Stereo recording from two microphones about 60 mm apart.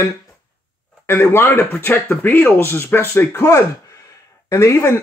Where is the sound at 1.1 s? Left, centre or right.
Left.